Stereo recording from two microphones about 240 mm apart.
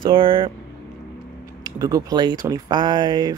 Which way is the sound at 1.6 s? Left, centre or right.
Centre.